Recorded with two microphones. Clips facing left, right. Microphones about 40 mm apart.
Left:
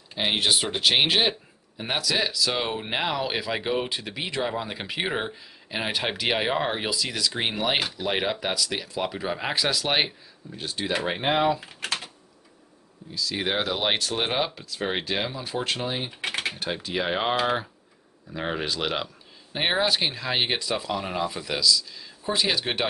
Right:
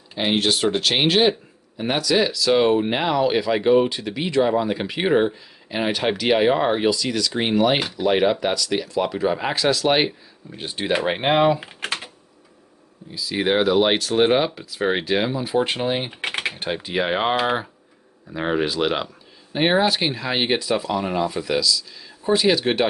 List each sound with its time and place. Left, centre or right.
0.1 s speech: centre
10.5 s speech: right
13.1 s speech: centre
15.6 s speech: right
16.2 s typing: right
16.6 s speech: centre